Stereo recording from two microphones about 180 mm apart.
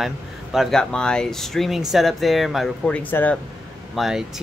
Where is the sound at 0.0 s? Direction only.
Centre (ahead or behind).